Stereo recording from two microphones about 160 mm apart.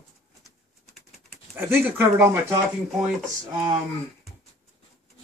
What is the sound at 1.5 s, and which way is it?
Speech, 15° right (ahead or behind).